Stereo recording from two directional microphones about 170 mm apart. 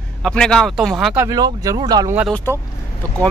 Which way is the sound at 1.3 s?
20° right (ahead or behind).